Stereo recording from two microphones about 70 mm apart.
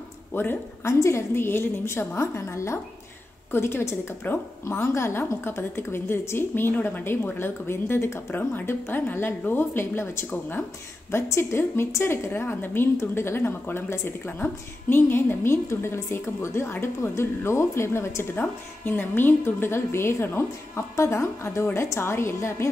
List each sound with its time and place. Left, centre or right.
0.3 s a woman's voice: left
0.8 s a woman's voice: left
18.3 s a woman's voice: left